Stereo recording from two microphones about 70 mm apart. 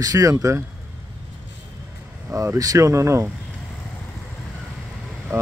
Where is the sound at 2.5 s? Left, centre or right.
Right.